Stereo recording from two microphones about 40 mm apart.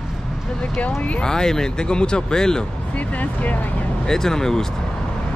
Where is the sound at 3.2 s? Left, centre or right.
Left.